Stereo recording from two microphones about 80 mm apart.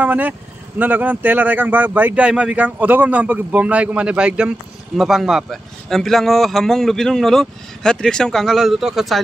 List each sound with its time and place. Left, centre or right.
0.0 s a man's voice: right; by 9.2 s centre